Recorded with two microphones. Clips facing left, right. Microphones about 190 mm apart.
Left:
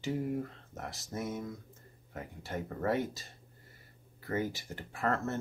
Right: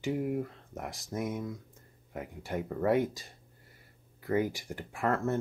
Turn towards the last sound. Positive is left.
turn(degrees=-10)  # may be behind; listen again after turning